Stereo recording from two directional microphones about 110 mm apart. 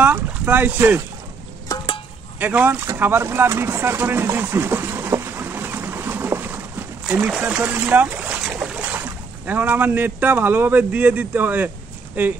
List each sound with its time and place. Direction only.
0.0 s speech: 15° right (ahead or behind)
2.3 s speech: 15° right (ahead or behind)
3.0 s vehicle: 20° right (ahead or behind)
7.2 s speech: 10° right (ahead or behind)